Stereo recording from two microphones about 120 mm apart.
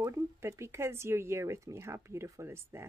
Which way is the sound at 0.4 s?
25° right (ahead or behind).